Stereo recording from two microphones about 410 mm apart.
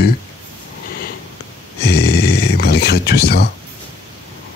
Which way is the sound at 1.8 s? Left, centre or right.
Left.